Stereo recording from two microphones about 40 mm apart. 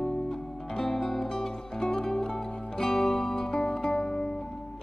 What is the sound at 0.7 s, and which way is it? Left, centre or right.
Music, centre.